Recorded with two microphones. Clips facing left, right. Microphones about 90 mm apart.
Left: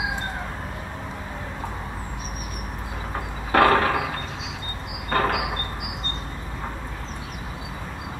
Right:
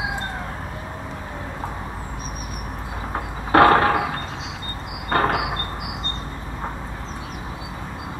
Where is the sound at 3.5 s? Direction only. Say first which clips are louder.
Right 4 dB; 35° right (ahead or behind).